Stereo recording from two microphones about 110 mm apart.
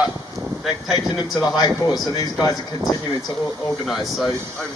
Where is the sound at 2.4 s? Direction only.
35° left (ahead or behind).